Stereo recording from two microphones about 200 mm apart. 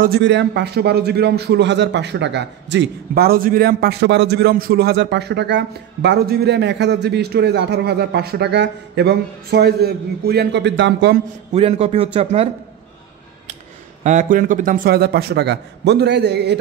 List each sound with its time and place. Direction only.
0.0 s a man's voice: 55° right (ahead or behind)
11.5 s a man's voice: 30° right (ahead or behind)
14.0 s a man's voice: 40° right (ahead or behind); by 16.5 s 55° right (ahead or behind)